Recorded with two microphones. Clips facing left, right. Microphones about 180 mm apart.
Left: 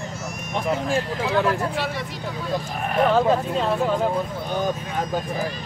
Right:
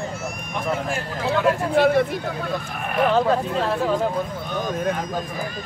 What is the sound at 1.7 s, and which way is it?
Speech, 55° right (ahead or behind).